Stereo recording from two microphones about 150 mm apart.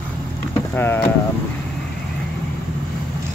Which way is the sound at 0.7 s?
15° left (ahead or behind).